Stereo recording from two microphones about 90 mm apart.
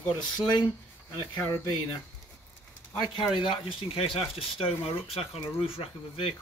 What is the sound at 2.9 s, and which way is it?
Speech, 60° left (ahead or behind).